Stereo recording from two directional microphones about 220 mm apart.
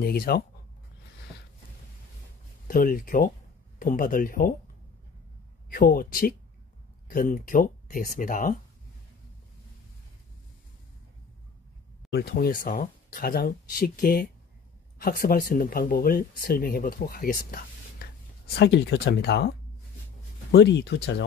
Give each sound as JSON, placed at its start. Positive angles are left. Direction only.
{"t": 0.0, "sound": "speech", "side_deg": 45}
{"t": 2.7, "sound": "speech", "side_deg": 40}
{"t": 5.7, "sound": "speech", "side_deg": 40}
{"t": 12.1, "sound": "speech", "side_deg": 45}
{"t": 20.5, "sound": "speech", "side_deg": 50}